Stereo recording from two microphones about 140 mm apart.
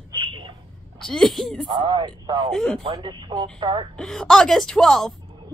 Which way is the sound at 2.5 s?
5° left (ahead or behind).